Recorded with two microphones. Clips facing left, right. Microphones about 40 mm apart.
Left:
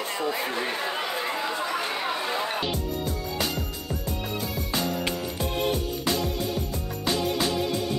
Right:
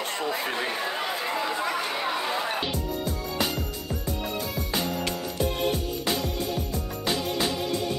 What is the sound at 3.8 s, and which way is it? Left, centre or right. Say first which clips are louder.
Music: even; centre.